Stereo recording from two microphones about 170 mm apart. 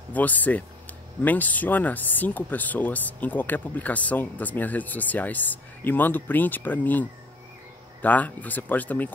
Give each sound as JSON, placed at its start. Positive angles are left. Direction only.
{"t": 0.1, "sound": "speech", "side_deg": 10}